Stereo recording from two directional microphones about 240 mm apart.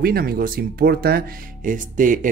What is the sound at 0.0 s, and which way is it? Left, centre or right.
Speech, right.